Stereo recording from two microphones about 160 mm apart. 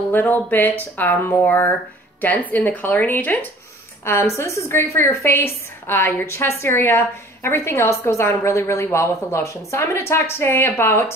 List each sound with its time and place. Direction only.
0.1 s a woman's voice: 10° left (ahead or behind)